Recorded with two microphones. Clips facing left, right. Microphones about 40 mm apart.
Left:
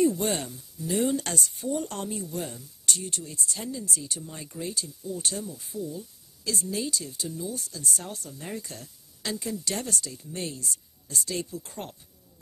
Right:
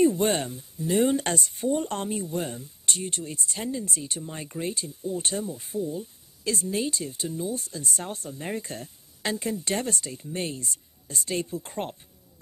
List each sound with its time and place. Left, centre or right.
0.0 s speech: right